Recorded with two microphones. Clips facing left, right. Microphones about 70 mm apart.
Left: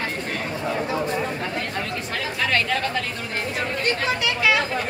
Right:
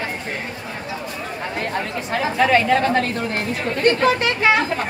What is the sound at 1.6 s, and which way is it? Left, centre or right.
Chatter, centre.